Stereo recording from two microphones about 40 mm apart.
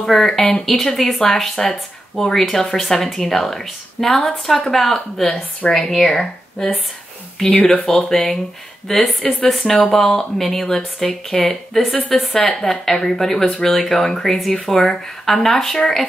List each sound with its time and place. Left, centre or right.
0.0 s speech: centre
5.2 s a woman's voice: left
5.7 s speech: centre